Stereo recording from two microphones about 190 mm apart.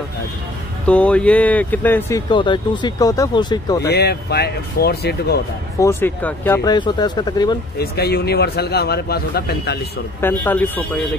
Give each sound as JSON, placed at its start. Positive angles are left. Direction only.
{"t": 0.8, "sound": "speech", "side_deg": 5}
{"t": 3.9, "sound": "speech", "side_deg": 55}
{"t": 5.8, "sound": "speech", "side_deg": 15}
{"t": 7.8, "sound": "speech", "side_deg": 55}
{"t": 10.2, "sound": "speech", "side_deg": 10}